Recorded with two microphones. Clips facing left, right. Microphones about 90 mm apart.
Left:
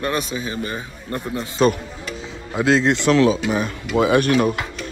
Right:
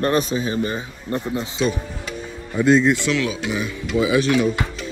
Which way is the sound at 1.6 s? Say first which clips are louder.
Left 5 dB; 50° left (ahead or behind).